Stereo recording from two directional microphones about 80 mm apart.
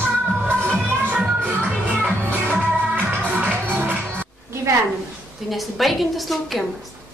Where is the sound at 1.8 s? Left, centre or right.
Right.